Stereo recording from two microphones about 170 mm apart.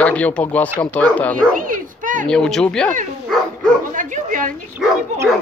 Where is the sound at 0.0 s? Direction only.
10° left (ahead or behind).